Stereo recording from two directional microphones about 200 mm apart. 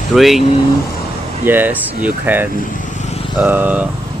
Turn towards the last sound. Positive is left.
turn(degrees=-10)  # may be behind; listen again after turning